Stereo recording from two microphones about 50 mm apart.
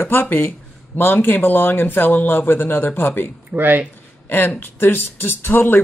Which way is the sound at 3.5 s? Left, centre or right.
Right.